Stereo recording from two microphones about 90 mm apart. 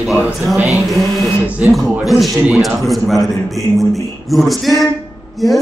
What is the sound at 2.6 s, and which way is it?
A man's voice, centre (ahead or behind).